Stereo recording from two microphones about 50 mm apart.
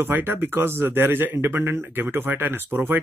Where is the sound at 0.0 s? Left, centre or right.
Right.